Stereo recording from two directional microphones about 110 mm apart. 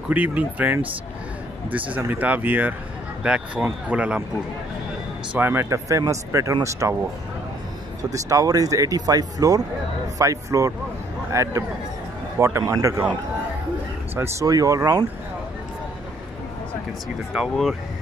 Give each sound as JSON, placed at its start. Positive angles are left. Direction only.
{"t": 0.1, "sound": "speech", "side_deg": -15}
{"t": 5.3, "sound": "speech", "side_deg": -20}
{"t": 8.0, "sound": "speech", "side_deg": -30}
{"t": 14.1, "sound": "speech", "side_deg": -25}
{"t": 17.3, "sound": "speech", "side_deg": -5}